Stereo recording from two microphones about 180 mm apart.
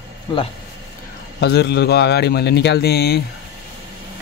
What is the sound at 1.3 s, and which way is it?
Speech, 65° left (ahead or behind).